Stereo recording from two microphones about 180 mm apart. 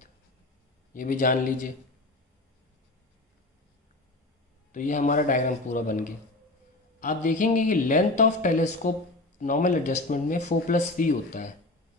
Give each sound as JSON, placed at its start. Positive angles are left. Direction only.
{"t": 0.9, "sound": "speech", "side_deg": 50}
{"t": 4.7, "sound": "speech", "side_deg": 45}